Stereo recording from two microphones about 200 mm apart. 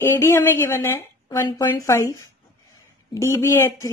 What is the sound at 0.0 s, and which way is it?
Speech, 10° left (ahead or behind).